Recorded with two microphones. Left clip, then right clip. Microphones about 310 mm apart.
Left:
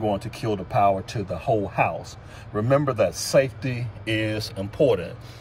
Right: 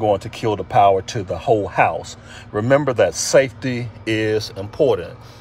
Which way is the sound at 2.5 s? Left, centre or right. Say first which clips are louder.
Right 6 dB; right.